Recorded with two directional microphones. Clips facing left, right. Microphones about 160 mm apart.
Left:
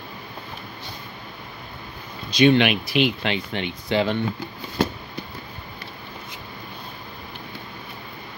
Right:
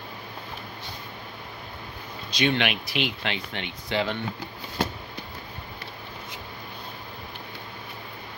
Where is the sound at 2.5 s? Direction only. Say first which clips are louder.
Left 7 dB; 15° left (ahead or behind).